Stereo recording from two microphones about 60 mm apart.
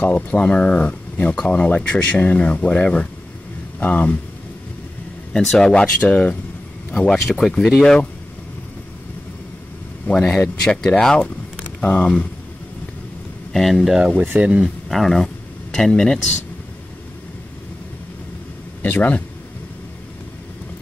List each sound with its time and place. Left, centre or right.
0.0 s speech: left
5.3 s speech: centre
6.9 s speech: centre
10.6 s speech: centre
11.8 s speech: left
13.5 s speech: centre
14.1 s speech: right
14.4 s speech: centre
14.9 s speech: centre
18.8 s speech: left